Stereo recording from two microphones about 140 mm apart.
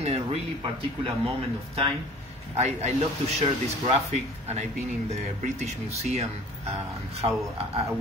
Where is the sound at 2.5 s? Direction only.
50° right (ahead or behind).